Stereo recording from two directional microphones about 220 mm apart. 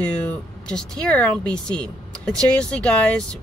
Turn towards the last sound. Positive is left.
turn(degrees=5)  # may be behind; listen again after turning